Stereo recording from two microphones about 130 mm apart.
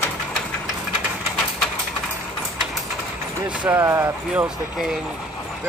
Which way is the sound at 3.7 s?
20° right (ahead or behind).